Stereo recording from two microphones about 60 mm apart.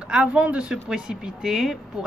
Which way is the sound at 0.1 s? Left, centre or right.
Centre.